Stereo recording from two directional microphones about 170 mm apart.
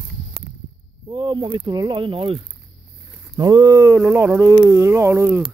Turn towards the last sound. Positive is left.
turn(degrees=-15)  # may be behind; listen again after turning